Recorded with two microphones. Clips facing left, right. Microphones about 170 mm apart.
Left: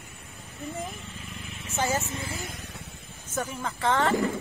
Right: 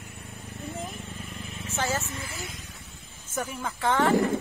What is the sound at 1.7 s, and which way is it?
Speech, 15° left (ahead or behind).